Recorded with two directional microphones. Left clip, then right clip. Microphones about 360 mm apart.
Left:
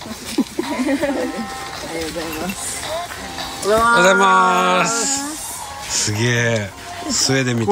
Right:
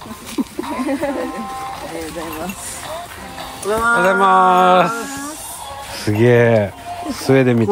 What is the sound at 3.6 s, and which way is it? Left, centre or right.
Speech, centre.